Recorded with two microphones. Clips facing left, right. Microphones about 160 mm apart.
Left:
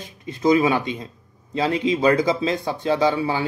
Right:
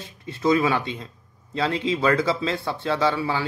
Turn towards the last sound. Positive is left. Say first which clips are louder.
# left 3 dB
turn(degrees=20)  # may be behind; listen again after turning